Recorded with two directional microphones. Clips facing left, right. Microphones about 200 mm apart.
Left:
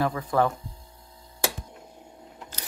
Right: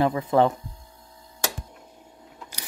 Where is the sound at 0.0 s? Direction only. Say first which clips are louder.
Right 4 dB; 20° right (ahead or behind).